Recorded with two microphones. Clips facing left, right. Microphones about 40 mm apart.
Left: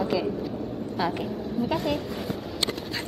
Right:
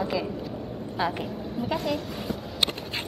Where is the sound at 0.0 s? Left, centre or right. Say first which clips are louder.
Left 3 dB; centre.